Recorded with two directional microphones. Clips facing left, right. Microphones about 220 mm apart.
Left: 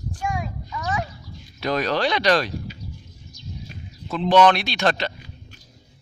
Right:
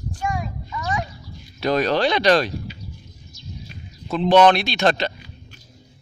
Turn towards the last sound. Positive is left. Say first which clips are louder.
# right 3 dB
turn(degrees=-20)  # may be behind; listen again after turning